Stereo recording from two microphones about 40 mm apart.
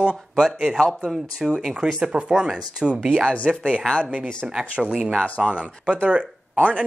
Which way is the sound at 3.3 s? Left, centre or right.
Right.